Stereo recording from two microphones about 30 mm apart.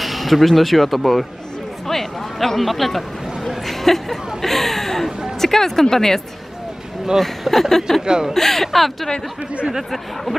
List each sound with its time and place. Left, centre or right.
0.0 s speech: centre
3.4 s a sound: centre
5.4 s speech: centre
7.2 s speech: centre
8.0 s speech: right
8.3 s speech: centre